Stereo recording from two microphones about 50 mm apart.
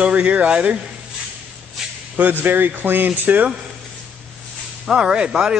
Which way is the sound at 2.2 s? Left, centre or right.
Right.